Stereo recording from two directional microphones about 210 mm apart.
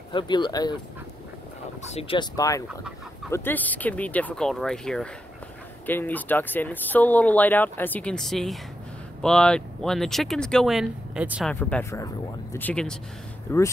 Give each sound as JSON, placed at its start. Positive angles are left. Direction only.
{"t": 0.1, "sound": "speech", "side_deg": 20}
{"t": 1.9, "sound": "speech", "side_deg": 25}
{"t": 11.6, "sound": "speech", "side_deg": 10}